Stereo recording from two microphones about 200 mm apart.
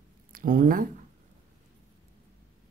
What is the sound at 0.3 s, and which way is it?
Speech, 45° right (ahead or behind).